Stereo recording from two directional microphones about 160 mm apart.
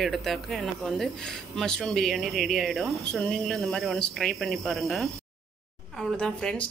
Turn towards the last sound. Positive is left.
turn(degrees=5)  # may be behind; listen again after turning